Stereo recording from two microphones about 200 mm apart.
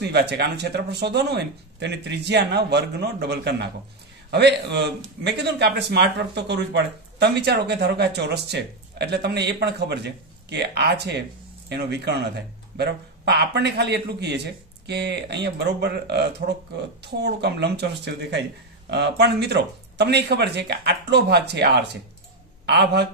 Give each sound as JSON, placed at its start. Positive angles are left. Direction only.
{"t": 0.0, "sound": "speech", "side_deg": -60}